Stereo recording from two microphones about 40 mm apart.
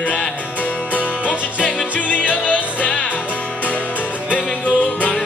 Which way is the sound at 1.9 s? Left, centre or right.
Left.